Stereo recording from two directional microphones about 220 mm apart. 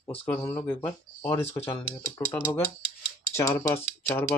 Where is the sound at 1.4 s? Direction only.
25° left (ahead or behind).